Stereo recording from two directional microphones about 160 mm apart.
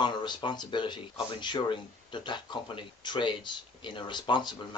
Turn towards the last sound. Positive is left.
turn(degrees=30)  # may be behind; listen again after turning